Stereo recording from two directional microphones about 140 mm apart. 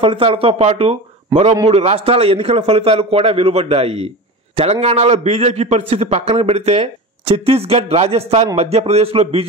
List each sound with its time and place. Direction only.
0.0 s a man's voice: 40° right (ahead or behind)